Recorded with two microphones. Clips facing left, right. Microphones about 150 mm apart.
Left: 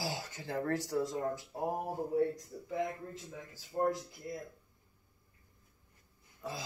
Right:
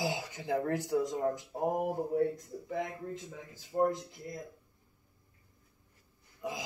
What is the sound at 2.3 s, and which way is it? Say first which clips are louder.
Speech: right 2 dB; 60° right (ahead or behind).